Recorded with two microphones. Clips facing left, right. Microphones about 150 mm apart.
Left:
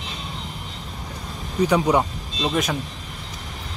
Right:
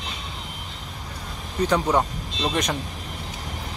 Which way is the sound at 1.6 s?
10° left (ahead or behind).